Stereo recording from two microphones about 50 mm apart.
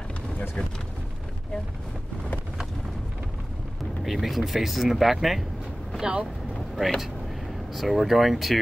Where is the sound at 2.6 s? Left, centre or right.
Centre.